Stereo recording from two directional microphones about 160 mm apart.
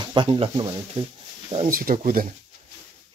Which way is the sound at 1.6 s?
60° right (ahead or behind).